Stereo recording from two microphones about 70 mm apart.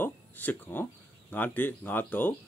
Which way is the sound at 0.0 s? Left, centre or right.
Left.